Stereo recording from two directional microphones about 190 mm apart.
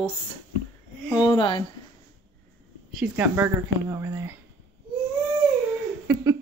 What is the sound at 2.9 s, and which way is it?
Speech, 5° right (ahead or behind).